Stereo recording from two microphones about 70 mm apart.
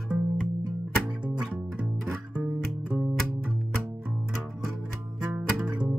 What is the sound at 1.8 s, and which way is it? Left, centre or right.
Music, right.